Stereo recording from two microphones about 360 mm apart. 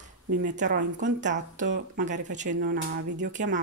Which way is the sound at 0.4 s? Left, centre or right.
Right.